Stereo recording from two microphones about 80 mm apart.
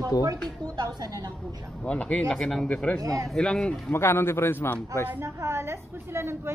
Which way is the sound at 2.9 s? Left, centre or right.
Right.